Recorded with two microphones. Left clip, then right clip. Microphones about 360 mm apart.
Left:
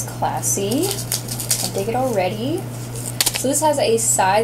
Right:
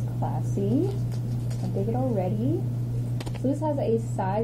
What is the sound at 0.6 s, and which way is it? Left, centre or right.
Speech, left.